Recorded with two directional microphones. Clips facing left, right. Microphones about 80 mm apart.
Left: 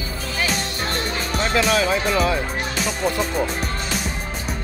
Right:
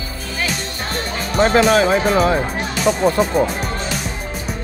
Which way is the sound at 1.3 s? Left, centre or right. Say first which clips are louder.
Right 7 dB; right.